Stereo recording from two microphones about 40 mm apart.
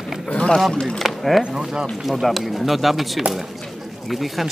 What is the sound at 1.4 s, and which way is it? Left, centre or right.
Speech, centre.